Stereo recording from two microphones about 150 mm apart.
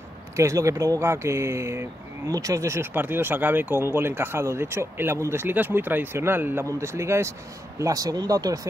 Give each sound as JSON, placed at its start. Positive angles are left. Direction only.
{"t": 0.4, "sound": "speech", "side_deg": -20}